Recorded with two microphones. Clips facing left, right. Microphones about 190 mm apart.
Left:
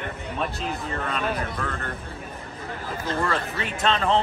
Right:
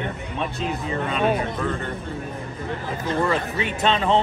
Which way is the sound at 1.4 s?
15° right (ahead or behind).